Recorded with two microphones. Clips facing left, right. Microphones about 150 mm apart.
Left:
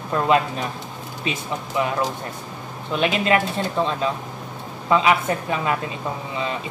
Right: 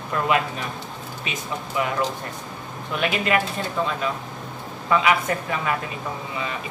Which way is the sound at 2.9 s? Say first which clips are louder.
Left 3 dB; 30° left (ahead or behind).